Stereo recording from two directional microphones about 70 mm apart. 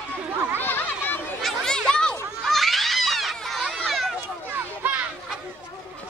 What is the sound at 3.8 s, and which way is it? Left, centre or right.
Children playing, centre.